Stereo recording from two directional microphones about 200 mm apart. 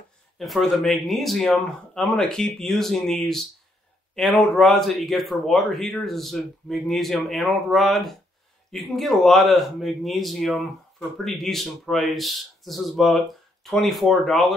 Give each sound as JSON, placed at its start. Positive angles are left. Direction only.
{"t": 0.4, "sound": "speech", "side_deg": 0}